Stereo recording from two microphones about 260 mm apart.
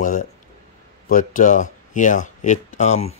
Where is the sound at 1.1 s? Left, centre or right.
Left.